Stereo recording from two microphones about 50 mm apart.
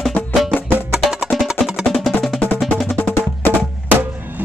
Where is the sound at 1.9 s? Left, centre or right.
Centre.